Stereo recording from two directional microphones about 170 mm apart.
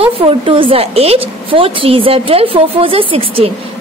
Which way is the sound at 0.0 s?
35° right (ahead or behind).